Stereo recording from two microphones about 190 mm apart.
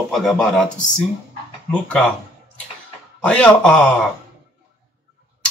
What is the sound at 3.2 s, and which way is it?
Speech, 5° left (ahead or behind).